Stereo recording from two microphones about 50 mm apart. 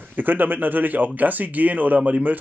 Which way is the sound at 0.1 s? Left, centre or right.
Right.